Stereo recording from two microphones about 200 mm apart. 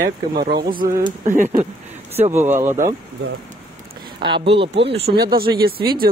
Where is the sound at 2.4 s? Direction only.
10° right (ahead or behind).